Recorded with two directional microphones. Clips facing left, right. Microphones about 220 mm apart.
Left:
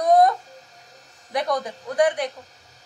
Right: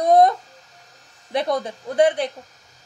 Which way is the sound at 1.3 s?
25° right (ahead or behind).